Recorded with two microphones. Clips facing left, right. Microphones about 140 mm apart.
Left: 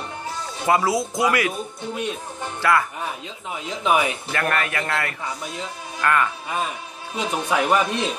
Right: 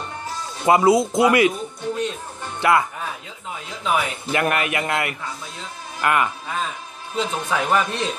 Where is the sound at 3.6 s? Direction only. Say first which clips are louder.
Left 2 dB; 20° left (ahead or behind).